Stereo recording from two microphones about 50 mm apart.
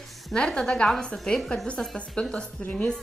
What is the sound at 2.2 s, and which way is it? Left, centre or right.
Speech, left.